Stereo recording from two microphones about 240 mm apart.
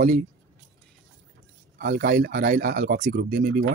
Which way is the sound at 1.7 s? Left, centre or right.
Right.